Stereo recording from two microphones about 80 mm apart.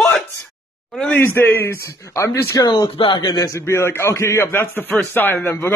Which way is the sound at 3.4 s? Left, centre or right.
Left.